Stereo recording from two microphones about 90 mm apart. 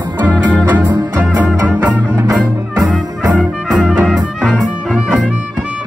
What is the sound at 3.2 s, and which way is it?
Music, 10° right (ahead or behind).